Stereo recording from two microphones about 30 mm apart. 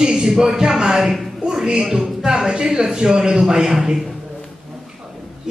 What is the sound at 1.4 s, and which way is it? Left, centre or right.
Speech, right.